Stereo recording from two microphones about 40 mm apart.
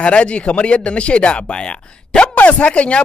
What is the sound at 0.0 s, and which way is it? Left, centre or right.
Speech, left.